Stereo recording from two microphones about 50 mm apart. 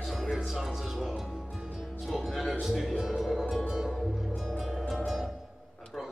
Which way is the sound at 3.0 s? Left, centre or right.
Centre.